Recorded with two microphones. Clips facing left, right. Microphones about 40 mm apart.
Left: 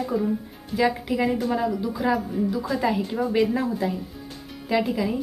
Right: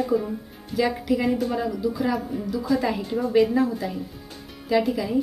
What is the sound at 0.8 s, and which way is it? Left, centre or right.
A woman's voice, centre.